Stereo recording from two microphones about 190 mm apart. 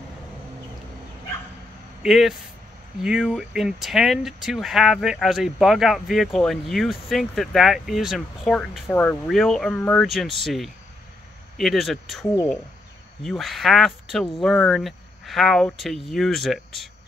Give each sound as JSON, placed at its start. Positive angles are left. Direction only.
{"t": 2.0, "sound": "speech", "side_deg": 0}